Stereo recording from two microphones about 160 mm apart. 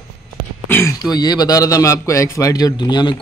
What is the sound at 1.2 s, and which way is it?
A man's voice, 25° left (ahead or behind).